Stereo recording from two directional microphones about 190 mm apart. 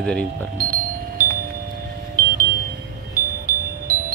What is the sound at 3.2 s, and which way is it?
Music, 50° right (ahead or behind).